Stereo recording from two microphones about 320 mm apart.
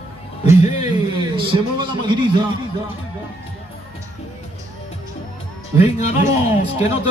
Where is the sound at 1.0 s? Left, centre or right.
Centre.